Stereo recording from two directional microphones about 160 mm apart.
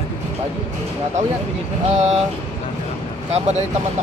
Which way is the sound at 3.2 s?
40° right (ahead or behind).